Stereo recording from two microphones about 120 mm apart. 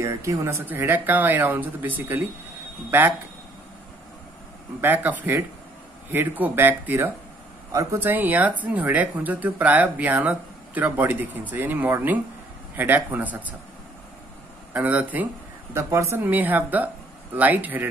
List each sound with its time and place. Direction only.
0.0 s speech: 25° right (ahead or behind)
4.8 s speech: 15° right (ahead or behind)
7.7 s speech: 30° right (ahead or behind)
8.0 s speech: 15° right (ahead or behind)
14.7 s speech: 15° right (ahead or behind)
15.7 s speech: 25° right (ahead or behind)